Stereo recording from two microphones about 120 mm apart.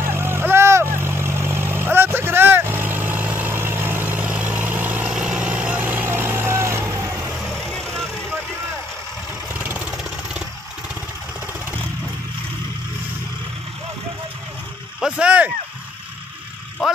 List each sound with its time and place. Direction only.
0.0 s vehicle: 20° right (ahead or behind)
7.3 s vehicle: 5° left (ahead or behind)
9.5 s vehicle: 15° right (ahead or behind)
15.0 s a sound: 5° right (ahead or behind)